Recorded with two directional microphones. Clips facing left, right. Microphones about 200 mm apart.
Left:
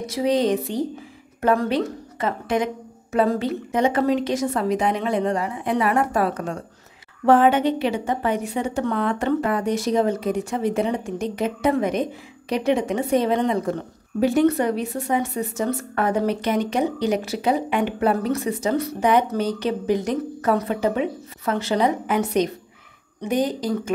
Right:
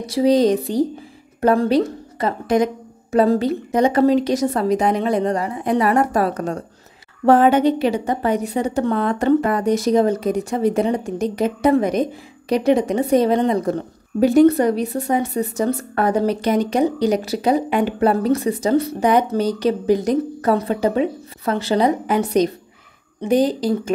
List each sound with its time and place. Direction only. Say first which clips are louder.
0.0 s a woman's voice: right 5 dB; 35° right (ahead or behind)